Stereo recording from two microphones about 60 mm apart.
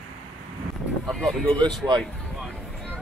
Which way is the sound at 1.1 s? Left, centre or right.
Centre.